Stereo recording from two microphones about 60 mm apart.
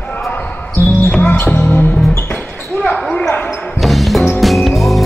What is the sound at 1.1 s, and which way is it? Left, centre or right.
Music, left.